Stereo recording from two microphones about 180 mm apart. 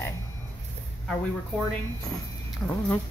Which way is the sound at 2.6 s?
Centre (ahead or behind).